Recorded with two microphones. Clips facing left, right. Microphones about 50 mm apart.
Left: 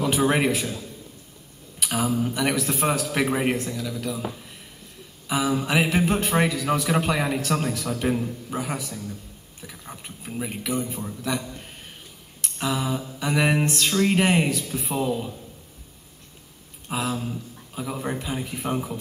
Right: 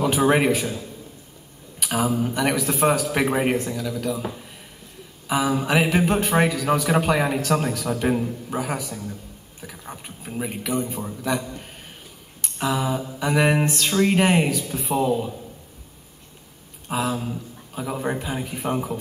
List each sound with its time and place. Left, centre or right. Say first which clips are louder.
0.0 s speech: right 3 dB; centre
12.4 s a sound: right 2 dB; centre
13.2 s speech: right 2 dB; centre
16.8 s speech: right 3 dB; centre